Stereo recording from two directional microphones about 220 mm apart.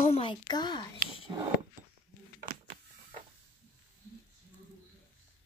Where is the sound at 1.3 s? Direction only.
20° right (ahead or behind).